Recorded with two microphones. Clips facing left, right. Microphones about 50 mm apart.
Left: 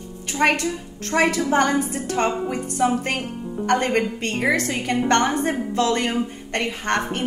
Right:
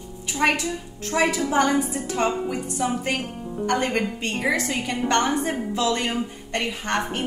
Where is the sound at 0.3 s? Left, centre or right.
Left.